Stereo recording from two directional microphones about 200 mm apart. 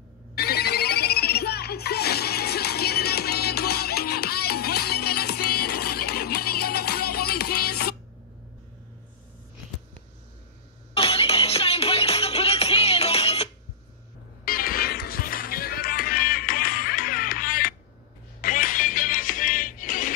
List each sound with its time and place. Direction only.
0.4 s music: 50° left (ahead or behind)
11.0 s music: 30° left (ahead or behind)
14.4 s music: 45° left (ahead or behind)